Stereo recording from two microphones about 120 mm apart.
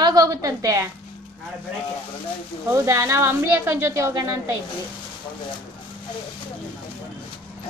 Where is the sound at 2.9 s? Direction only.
25° right (ahead or behind).